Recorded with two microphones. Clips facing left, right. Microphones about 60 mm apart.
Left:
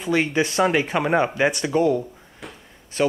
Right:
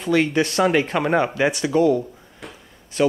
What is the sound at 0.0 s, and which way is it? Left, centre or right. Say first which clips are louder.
Speech: right 2 dB; centre.